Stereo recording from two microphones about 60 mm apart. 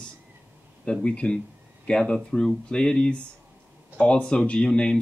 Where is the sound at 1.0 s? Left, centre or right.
Centre.